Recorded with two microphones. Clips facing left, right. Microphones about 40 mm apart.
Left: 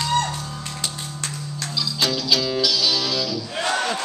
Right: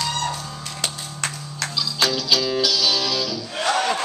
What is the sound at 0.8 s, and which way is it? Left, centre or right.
Music, right.